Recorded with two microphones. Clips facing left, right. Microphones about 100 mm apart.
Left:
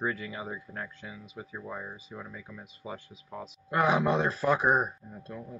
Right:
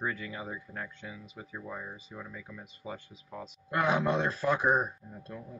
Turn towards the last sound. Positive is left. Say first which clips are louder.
# left 2 dB
turn(degrees=10)  # may be behind; listen again after turning